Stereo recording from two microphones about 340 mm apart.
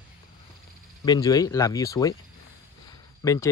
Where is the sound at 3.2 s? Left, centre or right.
Centre.